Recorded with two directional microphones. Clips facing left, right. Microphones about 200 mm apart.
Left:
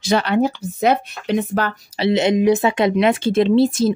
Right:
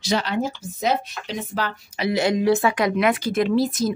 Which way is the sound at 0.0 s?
60° left (ahead or behind).